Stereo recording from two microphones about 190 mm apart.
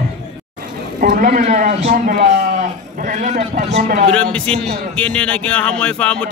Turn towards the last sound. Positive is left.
turn(degrees=5)  # may be behind; listen again after turning